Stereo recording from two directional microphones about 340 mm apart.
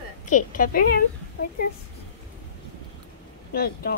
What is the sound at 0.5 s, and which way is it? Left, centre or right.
Speech, left.